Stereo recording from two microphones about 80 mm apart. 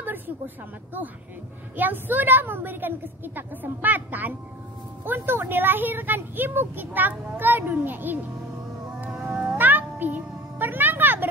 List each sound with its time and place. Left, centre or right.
1.8 s speech: right
9.0 s cat: right
9.6 s a sound: right